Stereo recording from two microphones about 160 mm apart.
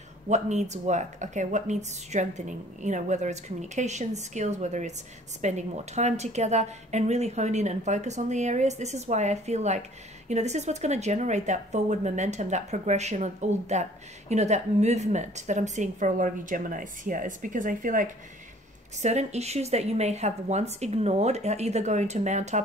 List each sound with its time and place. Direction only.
0.3 s a woman's voice: 45° right (ahead or behind)